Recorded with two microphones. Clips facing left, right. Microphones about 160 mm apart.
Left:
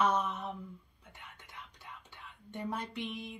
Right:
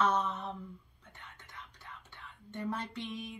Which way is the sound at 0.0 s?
15° left (ahead or behind).